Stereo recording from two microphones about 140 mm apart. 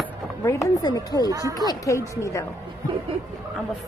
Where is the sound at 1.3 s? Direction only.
25° right (ahead or behind).